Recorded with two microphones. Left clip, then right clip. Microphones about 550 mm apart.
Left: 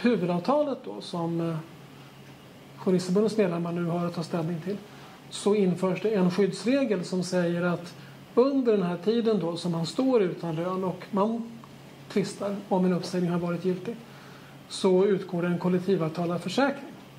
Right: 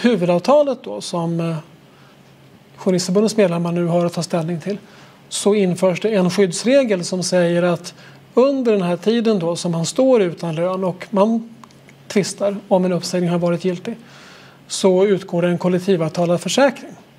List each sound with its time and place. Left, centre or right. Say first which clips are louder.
0.0 s speech: right 10 dB; right
2.8 s speech: right 8 dB; right
14.7 s speech: right 8 dB; right